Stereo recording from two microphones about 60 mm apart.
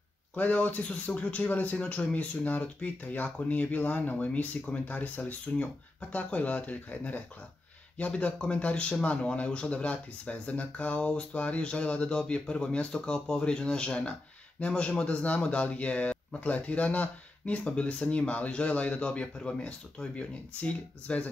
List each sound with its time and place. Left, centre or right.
0.3 s speech: left